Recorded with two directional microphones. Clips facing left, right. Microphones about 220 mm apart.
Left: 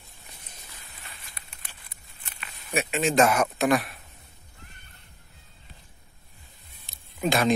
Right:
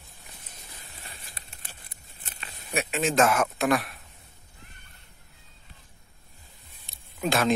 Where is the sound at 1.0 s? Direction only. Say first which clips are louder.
Right 2 dB; 30° right (ahead or behind).